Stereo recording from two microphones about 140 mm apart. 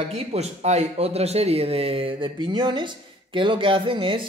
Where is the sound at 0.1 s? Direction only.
50° right (ahead or behind).